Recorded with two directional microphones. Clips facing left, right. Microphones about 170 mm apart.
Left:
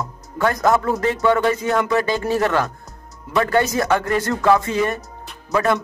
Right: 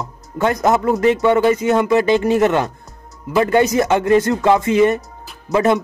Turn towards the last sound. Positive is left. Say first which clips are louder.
# right 4 dB
turn(degrees=-20)  # may be behind; listen again after turning